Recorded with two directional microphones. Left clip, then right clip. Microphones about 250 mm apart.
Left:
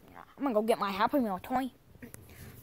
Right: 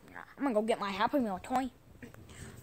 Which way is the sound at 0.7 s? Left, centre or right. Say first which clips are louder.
Left 3 dB; left.